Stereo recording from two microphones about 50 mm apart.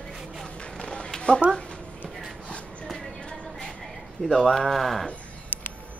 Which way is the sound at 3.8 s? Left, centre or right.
Centre.